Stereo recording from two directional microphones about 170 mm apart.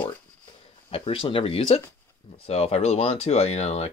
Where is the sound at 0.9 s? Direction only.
30° left (ahead or behind).